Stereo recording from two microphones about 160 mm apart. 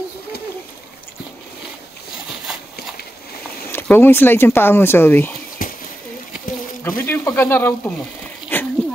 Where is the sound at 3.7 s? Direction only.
15° left (ahead or behind).